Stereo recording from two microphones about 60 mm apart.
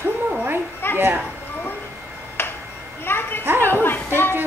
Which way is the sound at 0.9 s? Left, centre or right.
Right.